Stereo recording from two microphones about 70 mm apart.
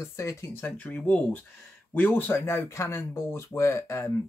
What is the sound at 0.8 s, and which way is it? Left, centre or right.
Speech, left.